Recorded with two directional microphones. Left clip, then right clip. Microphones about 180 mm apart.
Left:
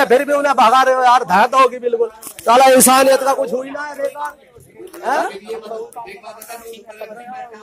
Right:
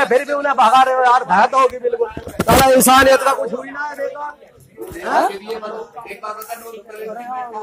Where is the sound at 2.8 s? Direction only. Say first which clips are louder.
Right 1 dB; 20° left (ahead or behind).